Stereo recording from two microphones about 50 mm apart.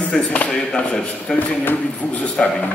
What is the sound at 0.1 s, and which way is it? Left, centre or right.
Speech, left.